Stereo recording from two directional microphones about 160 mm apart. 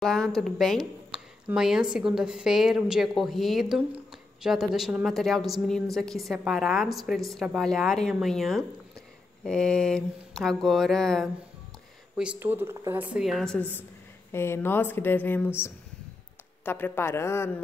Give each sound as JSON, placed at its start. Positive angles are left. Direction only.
{"t": 0.0, "sound": "a woman's voice", "side_deg": 5}
{"t": 12.2, "sound": "speech", "side_deg": -10}
{"t": 14.3, "sound": "speech", "side_deg": 15}